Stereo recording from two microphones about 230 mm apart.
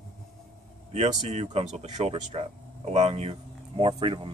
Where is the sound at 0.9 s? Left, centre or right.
Right.